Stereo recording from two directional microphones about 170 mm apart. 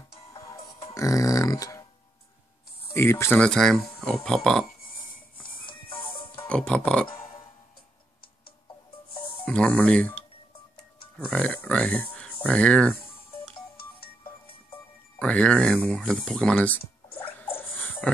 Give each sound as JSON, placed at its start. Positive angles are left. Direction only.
{"t": 0.9, "sound": "speech", "side_deg": 20}
{"t": 2.9, "sound": "speech", "side_deg": 15}
{"t": 5.7, "sound": "music", "side_deg": 30}
{"t": 6.4, "sound": "speech", "side_deg": 5}
{"t": 9.4, "sound": "speech", "side_deg": 5}
{"t": 15.1, "sound": "a sound", "side_deg": 5}